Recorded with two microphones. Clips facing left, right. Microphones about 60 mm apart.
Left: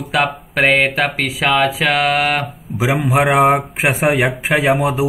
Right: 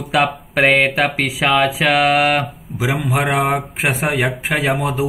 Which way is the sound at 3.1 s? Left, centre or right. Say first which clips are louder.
Left 6 dB; centre.